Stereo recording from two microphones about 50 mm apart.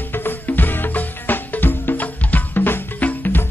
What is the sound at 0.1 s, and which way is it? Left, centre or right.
Music, left.